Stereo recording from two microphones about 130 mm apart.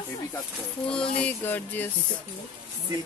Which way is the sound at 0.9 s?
10° left (ahead or behind).